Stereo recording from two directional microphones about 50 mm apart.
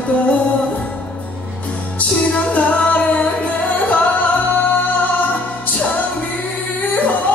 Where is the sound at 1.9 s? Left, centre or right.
Left.